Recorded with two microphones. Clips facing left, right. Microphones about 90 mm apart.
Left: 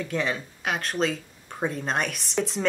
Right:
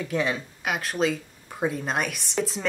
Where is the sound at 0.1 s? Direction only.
5° right (ahead or behind).